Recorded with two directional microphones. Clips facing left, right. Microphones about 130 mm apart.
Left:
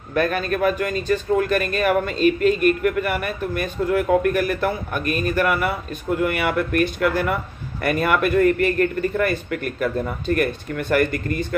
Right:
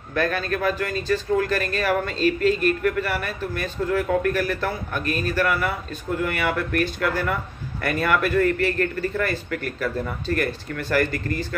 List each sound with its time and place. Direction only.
0.1 s a man's voice: 20° left (ahead or behind)